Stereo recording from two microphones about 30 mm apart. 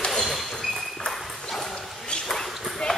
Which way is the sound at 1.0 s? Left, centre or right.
Centre.